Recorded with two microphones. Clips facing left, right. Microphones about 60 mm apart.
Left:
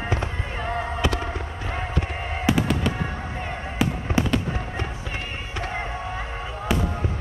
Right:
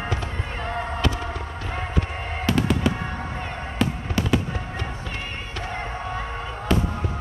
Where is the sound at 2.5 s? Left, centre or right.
Centre.